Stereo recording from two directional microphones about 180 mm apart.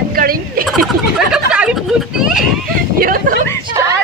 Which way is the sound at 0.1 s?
55° right (ahead or behind).